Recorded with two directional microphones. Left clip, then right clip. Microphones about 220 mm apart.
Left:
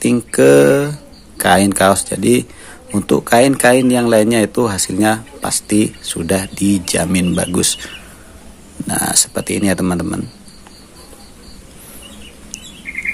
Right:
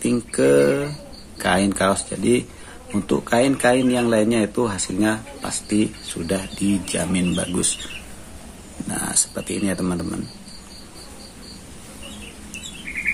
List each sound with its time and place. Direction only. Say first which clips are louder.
0.0 s speech: left 8 dB; 40° left (ahead or behind)
8.8 s speech: left 8 dB; 40° left (ahead or behind)